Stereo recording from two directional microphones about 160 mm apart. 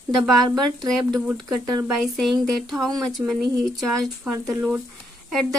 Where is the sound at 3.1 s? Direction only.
Centre (ahead or behind).